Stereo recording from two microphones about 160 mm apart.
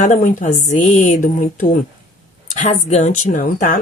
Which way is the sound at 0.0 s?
50° left (ahead or behind).